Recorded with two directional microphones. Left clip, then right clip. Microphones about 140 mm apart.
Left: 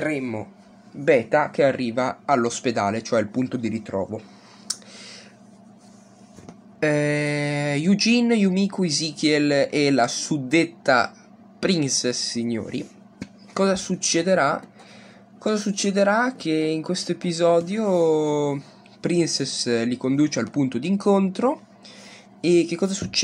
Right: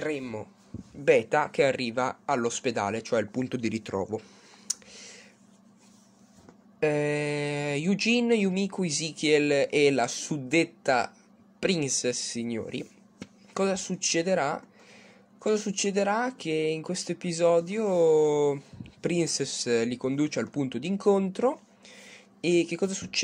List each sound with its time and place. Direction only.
0.0 s speech: 30° right (ahead or behind)
3.4 s speech: 40° right (ahead or behind)
3.7 s speech: 55° right (ahead or behind)
4.2 s a sound: 20° right (ahead or behind)
6.8 s speech: 20° right (ahead or behind)